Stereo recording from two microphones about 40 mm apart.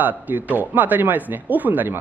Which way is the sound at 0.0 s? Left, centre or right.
Right.